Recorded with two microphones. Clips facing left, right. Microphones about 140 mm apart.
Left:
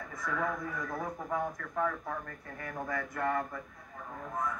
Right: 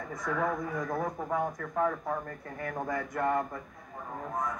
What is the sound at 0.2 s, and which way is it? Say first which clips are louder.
Speech: right 3 dB; 20° right (ahead or behind).